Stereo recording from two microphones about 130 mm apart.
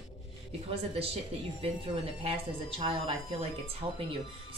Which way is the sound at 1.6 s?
45° right (ahead or behind).